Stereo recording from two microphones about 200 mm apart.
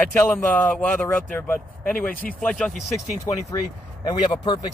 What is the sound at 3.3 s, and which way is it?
Speech, 15° left (ahead or behind).